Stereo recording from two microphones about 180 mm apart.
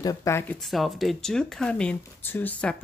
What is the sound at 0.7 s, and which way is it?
Speech, centre (ahead or behind).